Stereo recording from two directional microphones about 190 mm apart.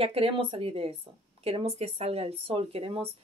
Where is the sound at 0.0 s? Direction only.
30° right (ahead or behind).